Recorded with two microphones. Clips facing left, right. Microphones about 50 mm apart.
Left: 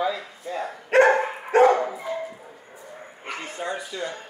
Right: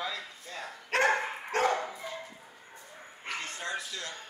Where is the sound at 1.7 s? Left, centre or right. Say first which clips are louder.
Left 9 dB; left.